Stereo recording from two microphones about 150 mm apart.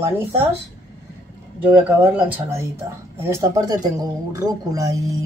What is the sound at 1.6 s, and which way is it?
Speech, 10° right (ahead or behind).